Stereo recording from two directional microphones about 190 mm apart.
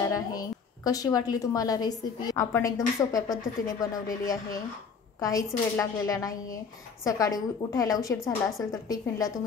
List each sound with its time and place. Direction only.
0.1 s a woman's voice: 20° left (ahead or behind)